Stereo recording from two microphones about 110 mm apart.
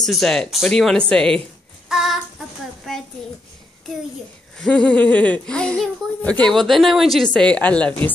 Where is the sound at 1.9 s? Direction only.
Centre (ahead or behind).